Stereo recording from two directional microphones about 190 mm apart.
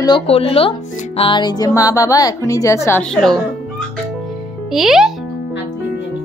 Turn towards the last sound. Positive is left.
turn(degrees=0)  # may be behind; listen again after turning